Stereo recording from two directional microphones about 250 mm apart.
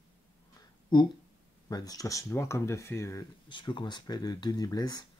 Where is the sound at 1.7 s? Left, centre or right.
Centre.